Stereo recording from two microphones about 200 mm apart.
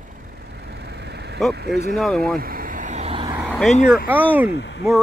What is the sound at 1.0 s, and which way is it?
Vehicle, 55° right (ahead or behind).